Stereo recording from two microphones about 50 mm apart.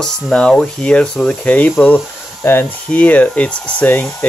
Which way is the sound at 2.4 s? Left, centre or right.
Left.